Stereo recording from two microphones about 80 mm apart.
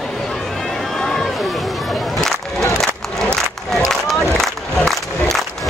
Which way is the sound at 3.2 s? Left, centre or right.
Centre.